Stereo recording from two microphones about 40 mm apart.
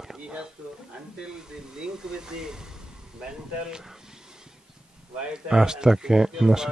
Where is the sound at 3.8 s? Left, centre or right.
Centre.